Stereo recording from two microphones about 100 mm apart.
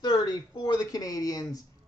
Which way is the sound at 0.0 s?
45° left (ahead or behind).